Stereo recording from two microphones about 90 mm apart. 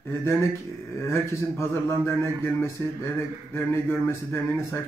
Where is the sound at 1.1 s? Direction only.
25° left (ahead or behind).